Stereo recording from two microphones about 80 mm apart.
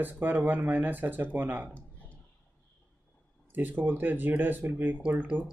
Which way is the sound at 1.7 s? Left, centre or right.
Centre.